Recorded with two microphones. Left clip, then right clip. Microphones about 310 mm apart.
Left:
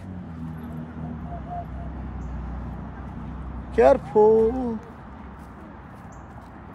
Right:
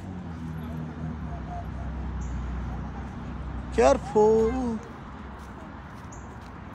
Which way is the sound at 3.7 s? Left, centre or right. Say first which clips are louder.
Left 4 dB; centre.